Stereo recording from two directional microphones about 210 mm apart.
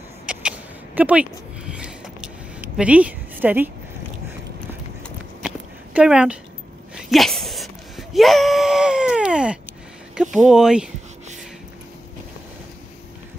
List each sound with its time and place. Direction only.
0.3 s a sound: 5° right (ahead or behind)
5.9 s speech: 5° right (ahead or behind)
7.0 s wail: centre (ahead or behind)
10.2 s speech: 5° right (ahead or behind)